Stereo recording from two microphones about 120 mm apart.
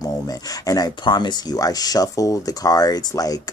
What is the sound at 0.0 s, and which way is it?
Speech, 30° left (ahead or behind).